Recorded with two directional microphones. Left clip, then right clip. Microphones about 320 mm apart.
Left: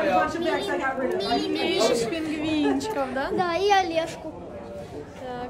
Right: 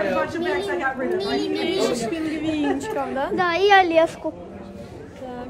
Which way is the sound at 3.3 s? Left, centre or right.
Right.